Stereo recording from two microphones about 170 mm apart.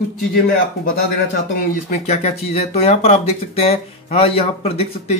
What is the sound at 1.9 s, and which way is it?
Speech, 40° left (ahead or behind).